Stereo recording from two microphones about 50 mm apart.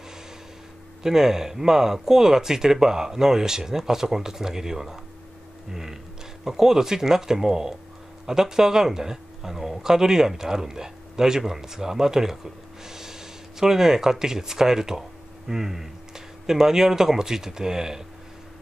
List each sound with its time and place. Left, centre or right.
1.0 s speech: centre
5.7 s music: centre
6.4 s speech: centre